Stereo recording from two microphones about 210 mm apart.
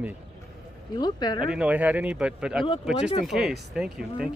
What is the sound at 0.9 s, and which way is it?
Speech, 20° left (ahead or behind).